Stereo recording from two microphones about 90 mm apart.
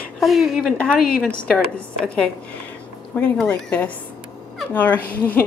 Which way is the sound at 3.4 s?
15° left (ahead or behind).